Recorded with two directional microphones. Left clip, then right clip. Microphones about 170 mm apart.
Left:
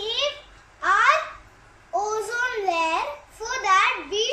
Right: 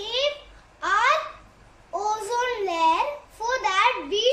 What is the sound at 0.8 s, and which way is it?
Babbling, 15° right (ahead or behind).